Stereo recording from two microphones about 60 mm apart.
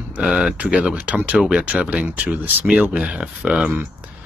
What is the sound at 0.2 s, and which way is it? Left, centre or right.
Speech, centre.